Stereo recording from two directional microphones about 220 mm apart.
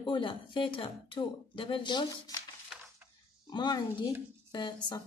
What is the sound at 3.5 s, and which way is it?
A woman's voice, 20° left (ahead or behind).